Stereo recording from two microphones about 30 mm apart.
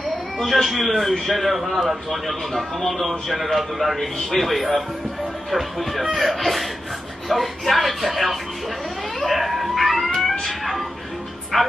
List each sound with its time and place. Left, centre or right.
0.7 s a man's voice: centre
9.2 s a sound: centre
10.4 s music: centre
11.5 s speech: centre